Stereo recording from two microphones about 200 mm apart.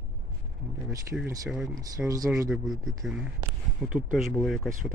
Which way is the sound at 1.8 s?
15° right (ahead or behind).